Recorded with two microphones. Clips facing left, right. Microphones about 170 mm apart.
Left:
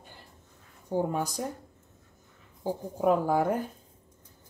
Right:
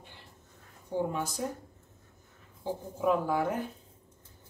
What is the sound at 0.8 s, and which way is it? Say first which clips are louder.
Speech: left 3 dB; 45° left (ahead or behind).